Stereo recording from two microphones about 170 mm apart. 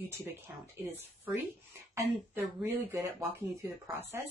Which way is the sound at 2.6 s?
15° right (ahead or behind).